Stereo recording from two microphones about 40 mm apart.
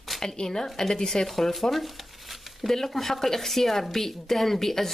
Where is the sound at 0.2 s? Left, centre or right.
Centre.